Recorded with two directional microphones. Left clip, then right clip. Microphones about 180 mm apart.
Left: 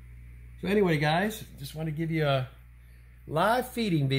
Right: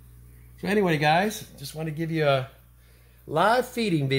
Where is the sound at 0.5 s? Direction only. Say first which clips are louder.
Right 2 dB; 5° left (ahead or behind).